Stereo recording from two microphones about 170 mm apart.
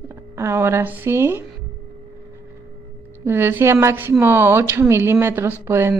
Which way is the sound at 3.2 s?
15° right (ahead or behind).